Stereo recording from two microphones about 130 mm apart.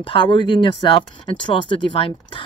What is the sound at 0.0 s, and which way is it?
A woman's voice, 40° left (ahead or behind).